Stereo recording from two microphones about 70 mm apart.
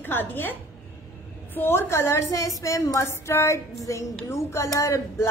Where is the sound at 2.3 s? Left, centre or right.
Left.